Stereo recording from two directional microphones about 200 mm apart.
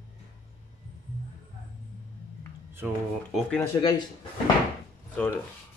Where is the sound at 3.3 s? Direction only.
5° left (ahead or behind).